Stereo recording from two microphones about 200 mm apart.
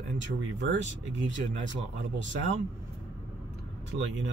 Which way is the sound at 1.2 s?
65° right (ahead or behind).